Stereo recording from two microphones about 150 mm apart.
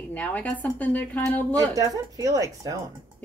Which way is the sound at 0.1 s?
10° left (ahead or behind).